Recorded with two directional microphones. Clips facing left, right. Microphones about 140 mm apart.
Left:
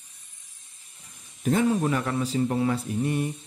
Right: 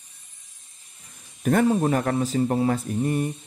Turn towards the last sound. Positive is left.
turn(degrees=-35)  # may be behind; listen again after turning